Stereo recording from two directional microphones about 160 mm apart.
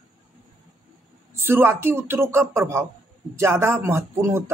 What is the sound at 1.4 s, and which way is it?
Speech, 15° right (ahead or behind).